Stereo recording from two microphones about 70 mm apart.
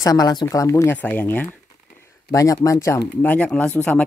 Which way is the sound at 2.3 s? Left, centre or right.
Left.